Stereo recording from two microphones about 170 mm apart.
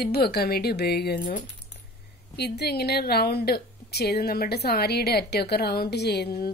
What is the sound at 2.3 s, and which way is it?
A woman's voice, 75° left (ahead or behind).